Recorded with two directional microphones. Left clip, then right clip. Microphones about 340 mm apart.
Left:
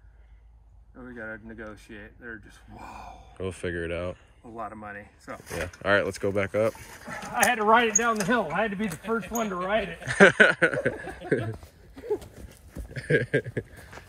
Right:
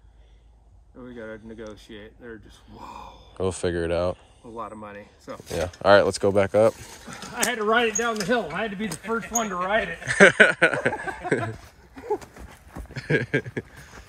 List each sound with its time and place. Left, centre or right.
0.9 s speech: centre
7.5 s speech: left
9.0 s speech: centre
12.4 s horse: centre